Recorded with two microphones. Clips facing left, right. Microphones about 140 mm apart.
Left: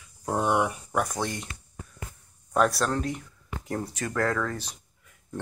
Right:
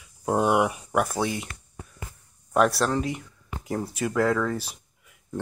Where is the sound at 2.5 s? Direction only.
5° right (ahead or behind).